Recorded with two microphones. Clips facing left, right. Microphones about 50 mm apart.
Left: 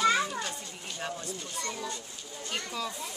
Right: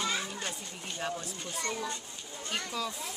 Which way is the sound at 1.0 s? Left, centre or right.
Centre.